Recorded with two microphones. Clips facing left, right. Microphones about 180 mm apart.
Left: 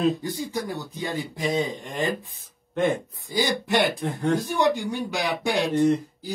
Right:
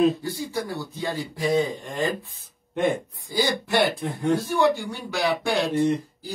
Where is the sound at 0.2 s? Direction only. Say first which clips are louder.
Even; 15° left (ahead or behind).